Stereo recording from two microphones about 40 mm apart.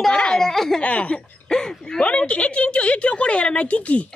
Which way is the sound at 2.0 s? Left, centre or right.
Left.